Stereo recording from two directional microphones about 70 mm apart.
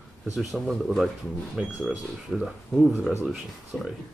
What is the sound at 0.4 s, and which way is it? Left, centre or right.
Speech, centre.